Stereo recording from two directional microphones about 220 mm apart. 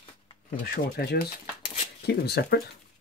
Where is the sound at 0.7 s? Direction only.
45° left (ahead or behind).